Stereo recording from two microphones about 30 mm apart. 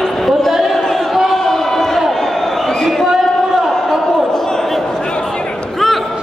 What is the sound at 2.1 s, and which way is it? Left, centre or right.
Crowd, centre.